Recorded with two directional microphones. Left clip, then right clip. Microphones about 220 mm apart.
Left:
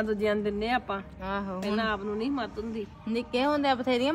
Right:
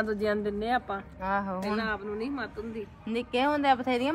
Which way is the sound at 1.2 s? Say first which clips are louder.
Right 4 dB; 20° right (ahead or behind).